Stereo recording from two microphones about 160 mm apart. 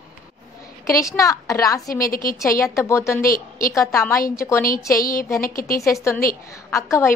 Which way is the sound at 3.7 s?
20° left (ahead or behind).